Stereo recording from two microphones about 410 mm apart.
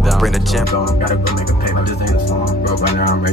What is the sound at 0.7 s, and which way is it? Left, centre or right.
Music, left.